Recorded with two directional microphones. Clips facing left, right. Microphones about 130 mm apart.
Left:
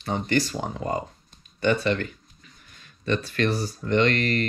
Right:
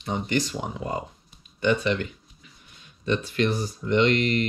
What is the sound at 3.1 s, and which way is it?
Speech, 15° right (ahead or behind).